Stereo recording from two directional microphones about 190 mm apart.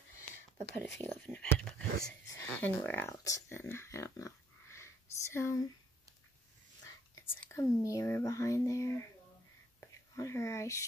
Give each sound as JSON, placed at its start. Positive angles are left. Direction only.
{"t": 0.9, "sound": "speech", "side_deg": 10}
{"t": 7.2, "sound": "speech", "side_deg": 10}
{"t": 9.8, "sound": "whispering", "side_deg": 15}